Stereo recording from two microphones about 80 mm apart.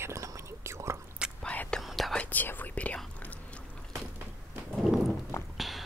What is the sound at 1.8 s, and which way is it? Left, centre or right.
Whispering, centre.